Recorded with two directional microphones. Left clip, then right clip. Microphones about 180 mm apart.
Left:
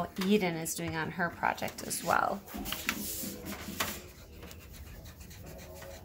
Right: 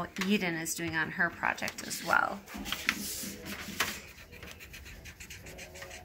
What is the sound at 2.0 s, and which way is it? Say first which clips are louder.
Speech: right 1 dB; 55° left (ahead or behind).